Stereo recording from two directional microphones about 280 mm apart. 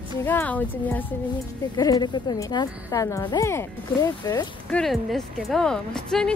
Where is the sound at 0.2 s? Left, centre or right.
Centre.